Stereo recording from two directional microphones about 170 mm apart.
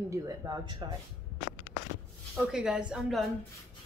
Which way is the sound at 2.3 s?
5° right (ahead or behind).